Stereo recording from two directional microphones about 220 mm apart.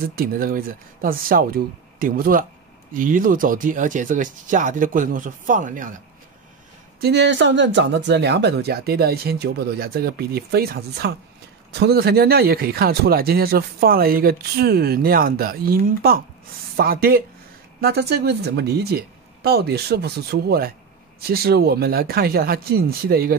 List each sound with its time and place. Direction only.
0.0 s speech: 40° right (ahead or behind)
7.0 s speech: 50° right (ahead or behind)